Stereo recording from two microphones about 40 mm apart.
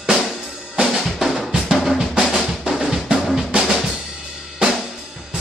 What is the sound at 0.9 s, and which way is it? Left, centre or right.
Drum, centre.